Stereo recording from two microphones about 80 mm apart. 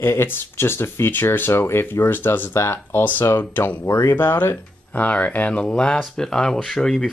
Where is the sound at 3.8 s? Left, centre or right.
Left.